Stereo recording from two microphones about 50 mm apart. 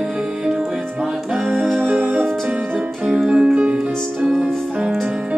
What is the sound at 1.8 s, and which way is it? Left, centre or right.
Music, right.